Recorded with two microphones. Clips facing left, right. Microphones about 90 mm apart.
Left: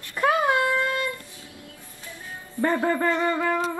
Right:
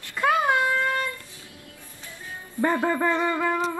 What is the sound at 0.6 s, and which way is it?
Child singing, 20° right (ahead or behind).